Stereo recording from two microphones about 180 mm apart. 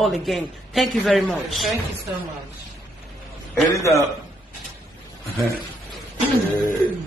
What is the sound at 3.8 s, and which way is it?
Speech, 15° left (ahead or behind).